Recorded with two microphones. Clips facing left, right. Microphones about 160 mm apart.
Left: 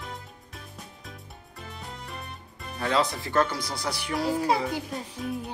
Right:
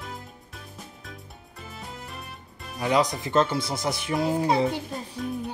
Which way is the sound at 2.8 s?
15° right (ahead or behind).